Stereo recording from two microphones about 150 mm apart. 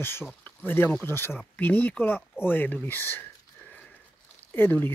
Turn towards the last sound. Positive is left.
turn(degrees=15)  # may be behind; listen again after turning